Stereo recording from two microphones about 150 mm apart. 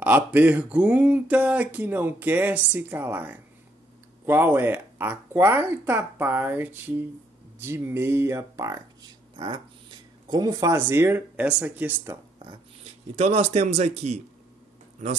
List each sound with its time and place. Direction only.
0.0 s speech: 10° right (ahead or behind)
13.1 s a man's voice: 45° right (ahead or behind)